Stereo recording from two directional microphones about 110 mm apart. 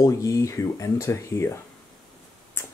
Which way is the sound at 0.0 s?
30° left (ahead or behind).